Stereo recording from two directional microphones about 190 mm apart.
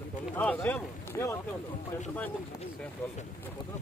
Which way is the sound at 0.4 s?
10° left (ahead or behind).